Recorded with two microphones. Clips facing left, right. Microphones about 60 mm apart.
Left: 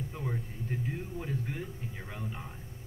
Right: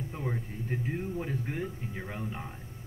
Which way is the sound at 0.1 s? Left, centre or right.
Right.